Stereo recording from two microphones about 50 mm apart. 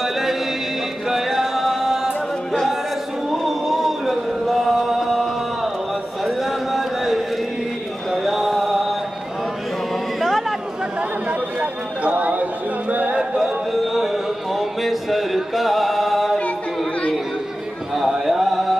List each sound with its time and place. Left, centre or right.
0.0 s music: centre
2.5 s a sound: centre
3.3 s chant: centre
6.2 s a sound: centre
8.1 s chant: centre
11.0 s chatter: right
12.9 s music: right
13.4 s music: centre
17.9 s a sound: centre